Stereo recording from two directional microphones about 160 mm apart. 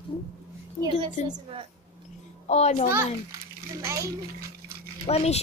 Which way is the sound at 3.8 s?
20° right (ahead or behind).